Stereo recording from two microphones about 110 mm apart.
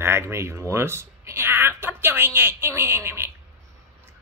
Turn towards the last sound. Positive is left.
turn(degrees=-25)  # may be behind; listen again after turning